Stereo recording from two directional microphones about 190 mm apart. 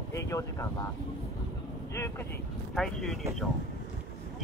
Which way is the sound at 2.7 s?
Centre (ahead or behind).